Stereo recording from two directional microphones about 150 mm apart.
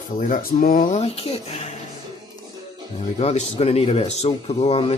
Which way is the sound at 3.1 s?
45° left (ahead or behind).